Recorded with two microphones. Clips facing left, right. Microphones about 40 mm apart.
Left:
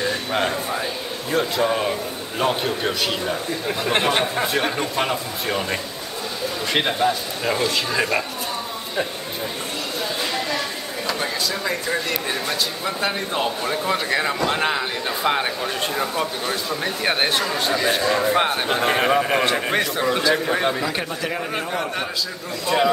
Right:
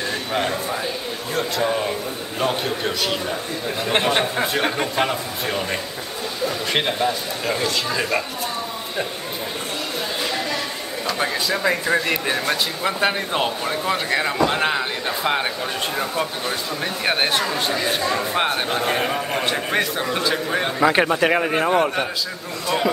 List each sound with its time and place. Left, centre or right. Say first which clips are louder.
0.3 s speech: even; centre
5.1 s speech: even; centre
11.1 s speech: right 2 dB; centre
13.7 s speech: even; centre
18.7 s a man's voice: left 3 dB; centre
19.4 s speech: left 1 dB; centre
20.8 s a man's voice: right 8 dB; right
21.5 s a man's voice: right 7 dB; right